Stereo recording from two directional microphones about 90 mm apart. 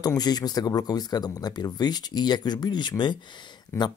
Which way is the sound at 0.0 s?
45° left (ahead or behind).